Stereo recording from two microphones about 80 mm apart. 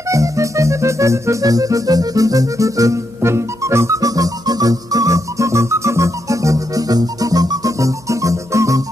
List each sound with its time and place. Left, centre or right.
0.1 s music: right